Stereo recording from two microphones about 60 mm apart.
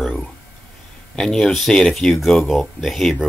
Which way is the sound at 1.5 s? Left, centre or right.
Centre.